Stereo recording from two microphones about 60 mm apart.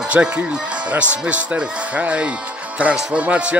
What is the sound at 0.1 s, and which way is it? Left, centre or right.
A man's voice, centre.